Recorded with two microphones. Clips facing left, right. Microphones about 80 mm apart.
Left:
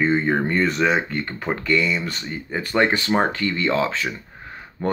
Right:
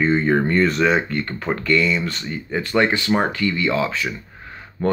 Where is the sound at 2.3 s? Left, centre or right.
Left.